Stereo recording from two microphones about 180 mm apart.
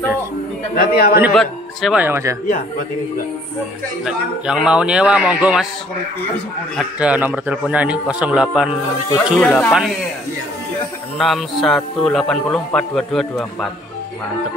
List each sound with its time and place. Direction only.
0.7 s a man's voice: 55° left (ahead or behind)
1.3 s speech: centre (ahead or behind)
2.0 s a man's voice: 15° right (ahead or behind)
4.0 s speech: 5° right (ahead or behind)
6.8 s a man's voice: 5° right (ahead or behind)
11.1 s speech: centre (ahead or behind)